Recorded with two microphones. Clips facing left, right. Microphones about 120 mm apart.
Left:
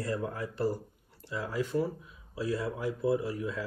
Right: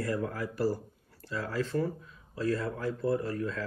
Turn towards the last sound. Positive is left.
turn(degrees=15)  # may be behind; listen again after turning